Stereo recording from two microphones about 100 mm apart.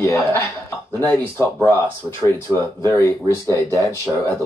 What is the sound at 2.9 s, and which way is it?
Speech, 25° left (ahead or behind).